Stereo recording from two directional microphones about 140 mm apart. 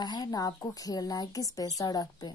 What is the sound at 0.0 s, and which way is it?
Speech, 30° left (ahead or behind).